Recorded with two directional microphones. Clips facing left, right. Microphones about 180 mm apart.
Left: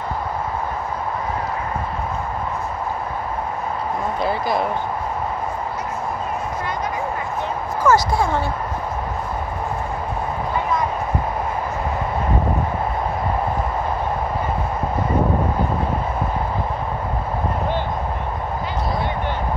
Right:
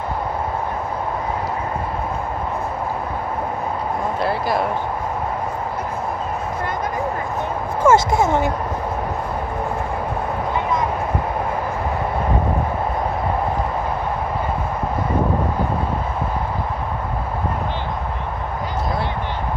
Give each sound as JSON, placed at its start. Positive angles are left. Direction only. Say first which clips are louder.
{"t": 4.2, "sound": "speech", "louder": "even", "side_deg": -5}
{"t": 7.8, "sound": "speech", "louder": "right 2 dB", "side_deg": -25}